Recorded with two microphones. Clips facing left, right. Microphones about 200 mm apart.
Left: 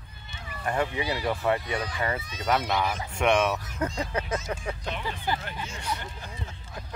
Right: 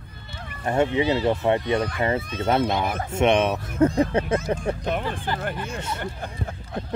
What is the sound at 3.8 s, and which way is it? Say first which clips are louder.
Speech: right 11 dB; 55° right (ahead or behind).